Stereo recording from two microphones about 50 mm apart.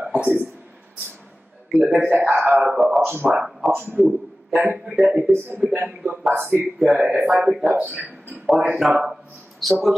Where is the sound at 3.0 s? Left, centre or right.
Right.